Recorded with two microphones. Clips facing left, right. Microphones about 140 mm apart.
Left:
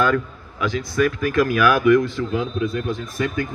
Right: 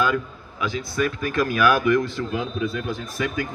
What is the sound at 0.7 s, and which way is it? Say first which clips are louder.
Speech: left 5 dB; 30° right (ahead or behind).